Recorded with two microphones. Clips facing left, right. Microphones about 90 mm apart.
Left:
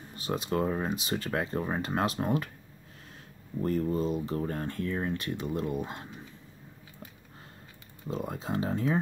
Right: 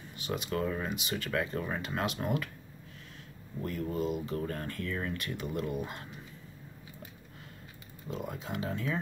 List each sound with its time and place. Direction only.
0.1 s speech: 35° left (ahead or behind)
3.6 s speech: 35° left (ahead or behind)
8.1 s speech: 35° left (ahead or behind)